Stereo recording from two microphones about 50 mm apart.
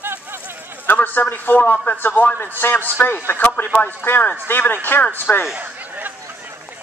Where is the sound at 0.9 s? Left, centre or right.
Left.